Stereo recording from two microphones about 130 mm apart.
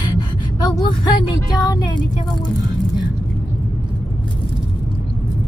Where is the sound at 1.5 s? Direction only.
30° left (ahead or behind).